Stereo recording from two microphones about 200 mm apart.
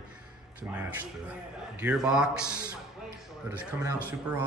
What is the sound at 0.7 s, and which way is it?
A man's voice, 10° right (ahead or behind).